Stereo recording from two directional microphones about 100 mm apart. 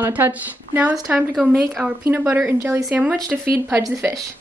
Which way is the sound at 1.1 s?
5° right (ahead or behind).